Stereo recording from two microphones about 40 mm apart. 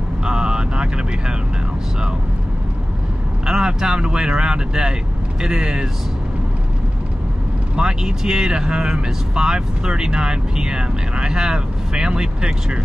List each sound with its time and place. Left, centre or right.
0.2 s vehicle: right
3.4 s speech: centre
7.7 s speech: centre